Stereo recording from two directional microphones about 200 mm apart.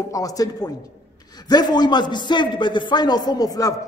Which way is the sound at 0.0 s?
15° left (ahead or behind).